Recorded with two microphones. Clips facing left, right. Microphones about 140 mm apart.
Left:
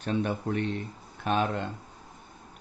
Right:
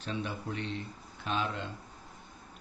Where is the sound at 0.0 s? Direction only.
55° left (ahead or behind).